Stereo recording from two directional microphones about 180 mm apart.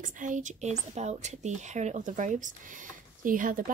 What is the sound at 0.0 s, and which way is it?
Speech, 45° right (ahead or behind).